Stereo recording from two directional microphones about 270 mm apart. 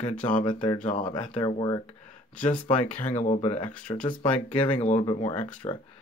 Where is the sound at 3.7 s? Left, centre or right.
Centre.